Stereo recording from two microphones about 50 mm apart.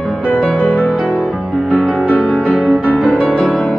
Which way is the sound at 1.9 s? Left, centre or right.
Left.